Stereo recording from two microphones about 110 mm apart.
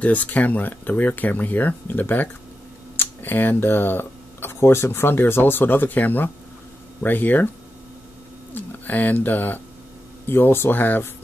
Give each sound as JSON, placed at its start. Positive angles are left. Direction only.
{"t": 0.0, "sound": "speech", "side_deg": 15}
{"t": 8.5, "sound": "speech", "side_deg": 15}